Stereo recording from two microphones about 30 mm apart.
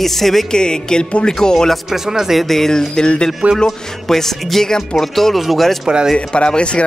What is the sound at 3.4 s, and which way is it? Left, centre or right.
Speech, right.